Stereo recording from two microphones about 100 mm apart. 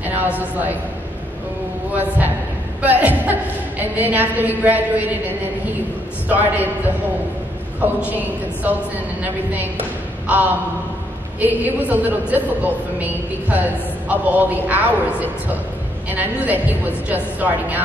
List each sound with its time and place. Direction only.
0.0 s a sound: 15° right (ahead or behind)
1.9 s a woman's voice: 15° right (ahead or behind)
6.2 s a woman's voice: 15° right (ahead or behind)
7.8 s a man's voice: 20° right (ahead or behind)
9.2 s a woman's voice: 15° right (ahead or behind)